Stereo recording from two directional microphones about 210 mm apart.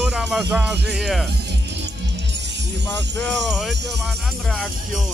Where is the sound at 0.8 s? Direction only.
5° right (ahead or behind).